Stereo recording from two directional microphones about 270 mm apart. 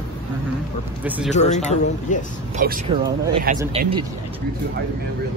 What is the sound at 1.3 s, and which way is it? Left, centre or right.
Speech, left.